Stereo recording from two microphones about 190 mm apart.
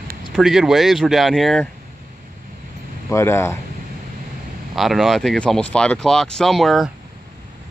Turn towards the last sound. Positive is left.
turn(degrees=0)  # may be behind; listen again after turning